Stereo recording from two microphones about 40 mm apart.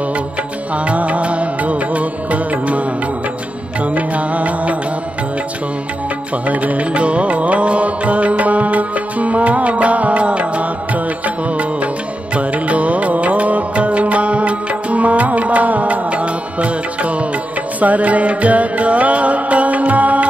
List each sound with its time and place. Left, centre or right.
0.8 s music: right
3.8 s music: right
6.4 s music: right